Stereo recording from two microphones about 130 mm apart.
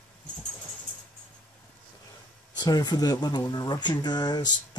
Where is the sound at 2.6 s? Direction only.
30° left (ahead or behind).